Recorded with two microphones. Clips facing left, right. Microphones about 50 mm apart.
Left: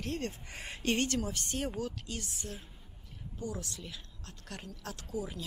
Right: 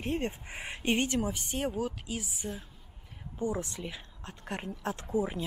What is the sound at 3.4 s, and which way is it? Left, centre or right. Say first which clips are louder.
Speech: right 7 dB; right.